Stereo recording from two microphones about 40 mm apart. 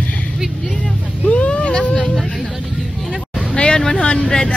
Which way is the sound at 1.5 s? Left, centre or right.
Centre.